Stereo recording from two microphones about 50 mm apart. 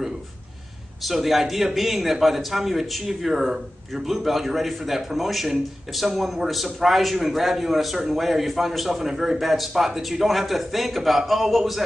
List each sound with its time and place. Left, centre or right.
1.0 s a man's voice: centre